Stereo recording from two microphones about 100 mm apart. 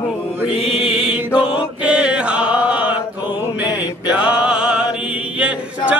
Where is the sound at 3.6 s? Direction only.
15° right (ahead or behind).